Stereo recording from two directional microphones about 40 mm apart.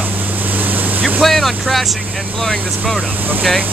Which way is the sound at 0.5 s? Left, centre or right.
Right.